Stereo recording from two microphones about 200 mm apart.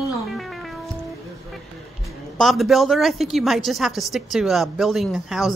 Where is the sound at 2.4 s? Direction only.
Centre (ahead or behind).